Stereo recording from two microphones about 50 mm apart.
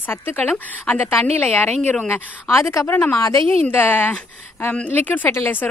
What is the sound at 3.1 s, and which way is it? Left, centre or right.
A woman's voice, left.